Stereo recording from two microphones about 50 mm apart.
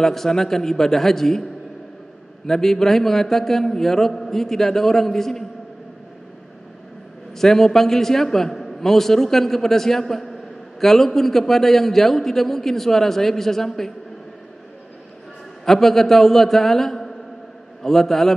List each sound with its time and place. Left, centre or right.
0.0 s a man's voice: centre
2.4 s a man's voice: centre
7.3 s a man's voice: centre
15.6 s a man's voice: centre